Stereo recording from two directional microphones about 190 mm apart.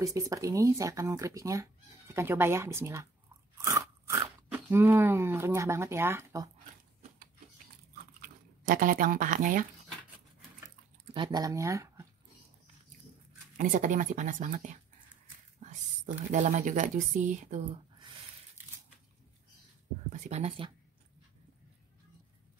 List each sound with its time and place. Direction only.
0.0 s speech: 15° right (ahead or behind)
8.2 s speech: 45° right (ahead or behind)
11.1 s speech: 25° right (ahead or behind)
13.6 s speech: 40° right (ahead or behind)
20.1 s speech: 35° right (ahead or behind)